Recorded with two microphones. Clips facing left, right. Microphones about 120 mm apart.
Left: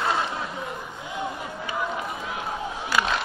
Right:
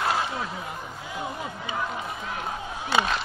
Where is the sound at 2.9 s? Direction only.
25° right (ahead or behind).